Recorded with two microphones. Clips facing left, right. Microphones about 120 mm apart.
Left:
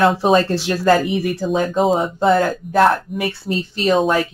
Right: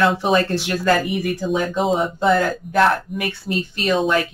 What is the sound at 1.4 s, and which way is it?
Speech, 40° left (ahead or behind).